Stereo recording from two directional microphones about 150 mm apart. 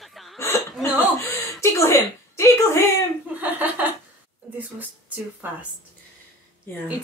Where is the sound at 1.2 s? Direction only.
20° left (ahead or behind).